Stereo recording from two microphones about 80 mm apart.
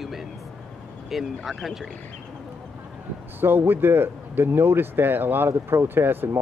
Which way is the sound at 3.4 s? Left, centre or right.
Right.